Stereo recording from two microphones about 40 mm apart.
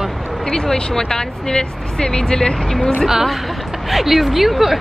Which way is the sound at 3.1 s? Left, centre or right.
Centre.